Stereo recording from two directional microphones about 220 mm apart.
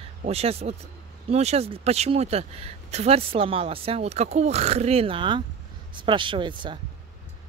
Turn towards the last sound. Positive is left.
turn(degrees=-20)  # may be behind; listen again after turning